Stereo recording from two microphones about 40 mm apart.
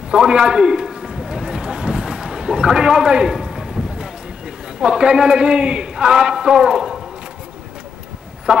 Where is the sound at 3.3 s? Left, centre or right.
Centre.